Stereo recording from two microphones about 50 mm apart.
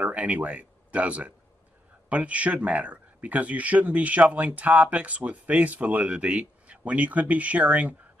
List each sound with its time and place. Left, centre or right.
0.0 s speech: right